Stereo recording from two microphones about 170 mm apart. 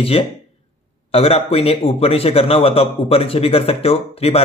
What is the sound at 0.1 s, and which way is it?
A man's voice, 35° left (ahead or behind).